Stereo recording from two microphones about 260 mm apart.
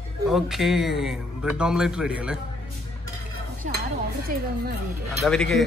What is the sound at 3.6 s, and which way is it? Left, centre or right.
Dishes, right.